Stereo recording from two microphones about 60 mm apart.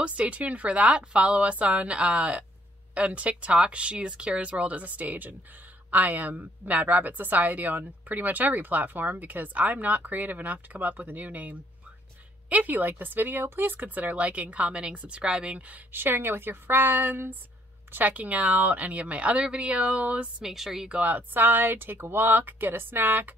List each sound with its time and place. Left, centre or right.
0.0 s a woman's voice: right
15.9 s a woman's voice: right
20.4 s a woman's voice: centre
20.9 s a woman's voice: right